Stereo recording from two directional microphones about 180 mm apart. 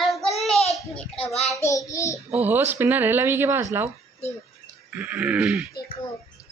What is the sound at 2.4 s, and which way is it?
Speech, 10° right (ahead or behind).